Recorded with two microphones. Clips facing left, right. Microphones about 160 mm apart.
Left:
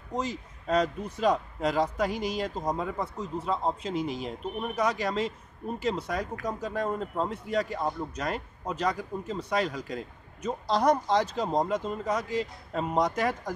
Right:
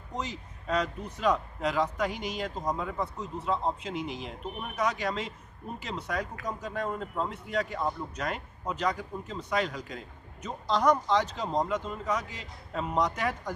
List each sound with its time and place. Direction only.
0.2 s speech: 40° left (ahead or behind)